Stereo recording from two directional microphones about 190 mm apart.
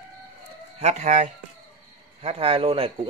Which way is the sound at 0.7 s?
35° right (ahead or behind).